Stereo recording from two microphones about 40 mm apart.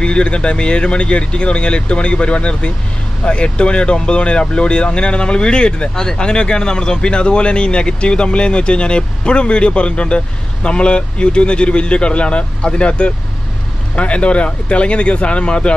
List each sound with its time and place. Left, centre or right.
0.0 s speech: left